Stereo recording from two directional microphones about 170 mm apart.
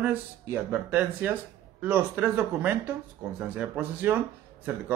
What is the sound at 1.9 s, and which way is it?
Speech, 10° right (ahead or behind).